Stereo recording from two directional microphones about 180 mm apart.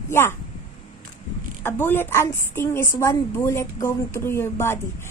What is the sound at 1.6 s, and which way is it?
A woman's voice, 10° left (ahead or behind).